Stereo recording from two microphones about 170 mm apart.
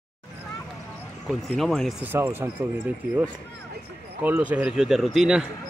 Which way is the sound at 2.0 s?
10° right (ahead or behind).